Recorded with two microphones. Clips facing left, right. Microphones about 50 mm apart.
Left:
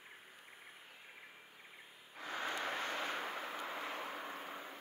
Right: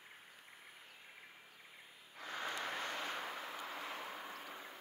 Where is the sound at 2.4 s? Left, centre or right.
Left.